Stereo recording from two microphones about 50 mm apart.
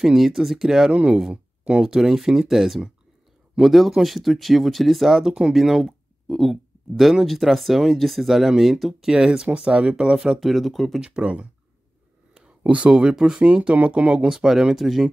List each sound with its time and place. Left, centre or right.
0.0 s speech: centre
9.1 s speech: centre
11.0 s speech: right
12.4 s a sound: right
12.9 s speech: centre